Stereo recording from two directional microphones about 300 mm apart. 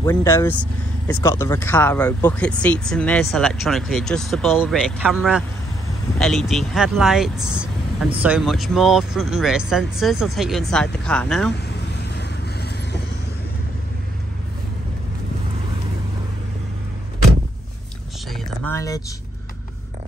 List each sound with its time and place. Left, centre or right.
0.0 s speech: centre
12.0 s vehicle: left
18.3 s a sound: centre